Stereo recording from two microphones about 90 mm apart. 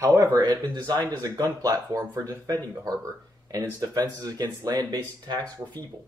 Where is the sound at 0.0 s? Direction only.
35° right (ahead or behind).